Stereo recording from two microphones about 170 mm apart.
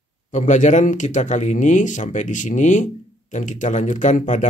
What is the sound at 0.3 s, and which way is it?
Speech, 45° left (ahead or behind).